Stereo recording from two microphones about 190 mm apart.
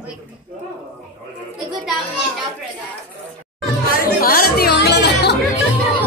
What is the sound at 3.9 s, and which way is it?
Chatter, 50° left (ahead or behind).